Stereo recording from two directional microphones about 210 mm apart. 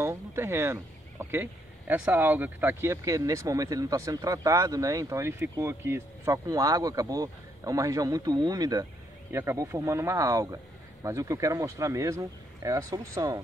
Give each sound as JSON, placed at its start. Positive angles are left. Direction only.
{"t": 0.0, "sound": "speech", "side_deg": -15}